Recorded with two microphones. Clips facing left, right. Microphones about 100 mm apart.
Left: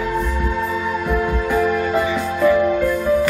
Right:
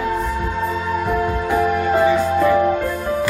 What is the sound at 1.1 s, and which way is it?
Music, 25° right (ahead or behind).